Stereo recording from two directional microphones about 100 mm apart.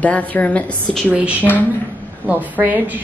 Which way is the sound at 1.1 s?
15° right (ahead or behind).